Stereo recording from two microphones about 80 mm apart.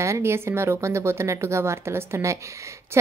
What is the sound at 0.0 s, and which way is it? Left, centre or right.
Speech, right.